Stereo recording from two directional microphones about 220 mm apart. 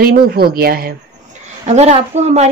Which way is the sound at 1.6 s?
30° right (ahead or behind).